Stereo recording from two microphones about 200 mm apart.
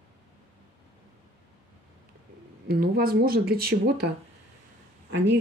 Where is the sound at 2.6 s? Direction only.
50° right (ahead or behind).